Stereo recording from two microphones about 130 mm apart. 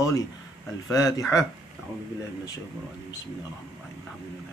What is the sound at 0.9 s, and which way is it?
Speech, 25° left (ahead or behind).